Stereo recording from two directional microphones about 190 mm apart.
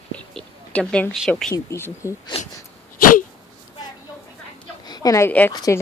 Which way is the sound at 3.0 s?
45° left (ahead or behind).